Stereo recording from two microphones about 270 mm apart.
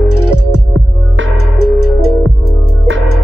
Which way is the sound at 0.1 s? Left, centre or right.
Right.